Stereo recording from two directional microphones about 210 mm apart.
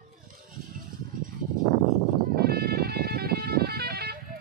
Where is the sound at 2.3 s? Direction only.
50° right (ahead or behind).